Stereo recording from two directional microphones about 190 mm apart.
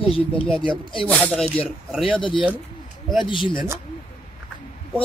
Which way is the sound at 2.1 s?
25° left (ahead or behind).